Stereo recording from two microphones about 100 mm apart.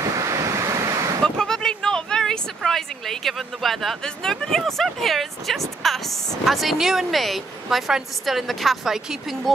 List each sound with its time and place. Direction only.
0.0 s waves: 35° right (ahead or behind)
1.2 s speech: 5° left (ahead or behind)